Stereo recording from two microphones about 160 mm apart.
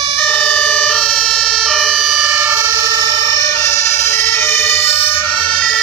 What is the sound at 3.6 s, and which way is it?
Emergency vehicle, 20° left (ahead or behind).